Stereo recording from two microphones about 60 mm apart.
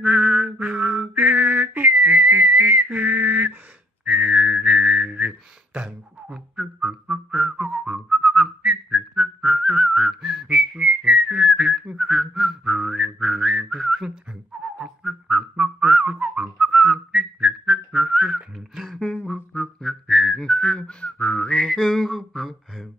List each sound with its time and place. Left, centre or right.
0.0 s mantra: right
4.0 s whistling: centre
14.6 s whistling: centre
19.3 s whistling: centre